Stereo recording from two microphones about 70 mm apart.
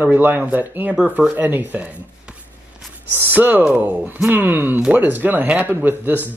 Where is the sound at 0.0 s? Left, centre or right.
Right.